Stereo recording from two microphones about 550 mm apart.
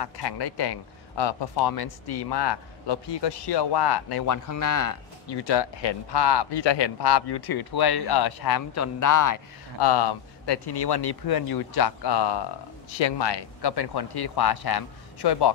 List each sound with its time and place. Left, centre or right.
0.0 s a man's voice: left
5.5 s a man's voice: left
9.8 s a man's voice: left